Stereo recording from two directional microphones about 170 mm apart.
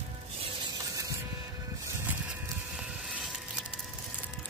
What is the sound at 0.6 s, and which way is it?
Music, 20° right (ahead or behind).